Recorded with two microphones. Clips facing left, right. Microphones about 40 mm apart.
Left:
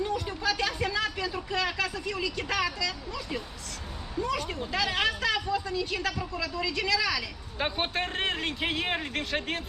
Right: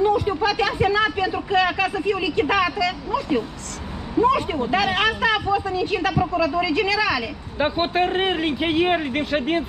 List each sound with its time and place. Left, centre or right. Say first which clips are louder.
0.0 s a sound: right 11 dB; right
3.2 s speech: right 12 dB; right
7.5 s speech: right 9 dB; centre